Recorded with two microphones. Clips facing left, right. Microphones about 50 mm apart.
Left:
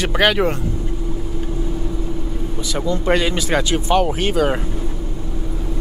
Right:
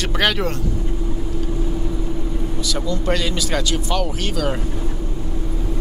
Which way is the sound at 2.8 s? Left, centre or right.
Left.